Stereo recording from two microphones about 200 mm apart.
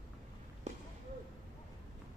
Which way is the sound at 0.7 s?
35° right (ahead or behind).